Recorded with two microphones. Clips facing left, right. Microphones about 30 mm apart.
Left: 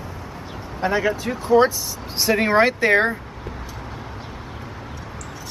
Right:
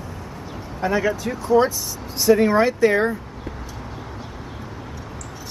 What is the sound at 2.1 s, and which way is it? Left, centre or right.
Speech, left.